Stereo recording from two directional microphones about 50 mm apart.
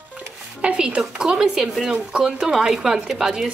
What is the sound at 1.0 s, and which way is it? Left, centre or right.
Speech, centre.